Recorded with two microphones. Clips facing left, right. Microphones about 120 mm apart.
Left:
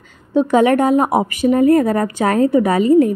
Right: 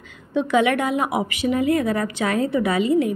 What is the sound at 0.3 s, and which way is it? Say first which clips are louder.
A woman's voice: left 6 dB; 40° left (ahead or behind).